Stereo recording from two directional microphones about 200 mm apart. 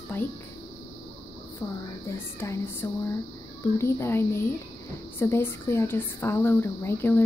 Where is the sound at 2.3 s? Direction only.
10° left (ahead or behind).